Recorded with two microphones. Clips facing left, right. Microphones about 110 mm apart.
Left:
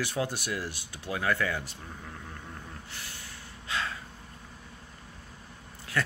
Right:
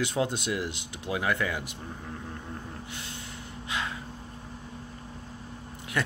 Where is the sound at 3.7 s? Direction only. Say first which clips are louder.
Even; 15° right (ahead or behind).